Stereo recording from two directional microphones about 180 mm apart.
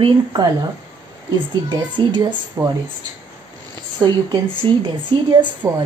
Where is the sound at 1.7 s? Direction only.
25° right (ahead or behind).